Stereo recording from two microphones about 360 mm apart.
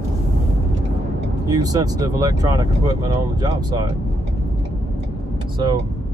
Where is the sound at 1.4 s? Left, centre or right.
Centre.